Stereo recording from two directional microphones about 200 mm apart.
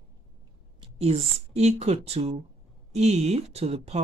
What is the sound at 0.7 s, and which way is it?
Speech, 30° right (ahead or behind).